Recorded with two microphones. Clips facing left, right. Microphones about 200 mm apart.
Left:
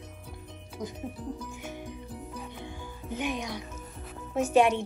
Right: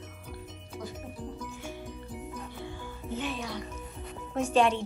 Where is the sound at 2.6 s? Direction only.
15° left (ahead or behind).